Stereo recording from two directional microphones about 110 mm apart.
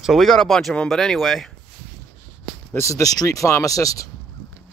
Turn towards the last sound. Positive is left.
turn(degrees=30)  # may be behind; listen again after turning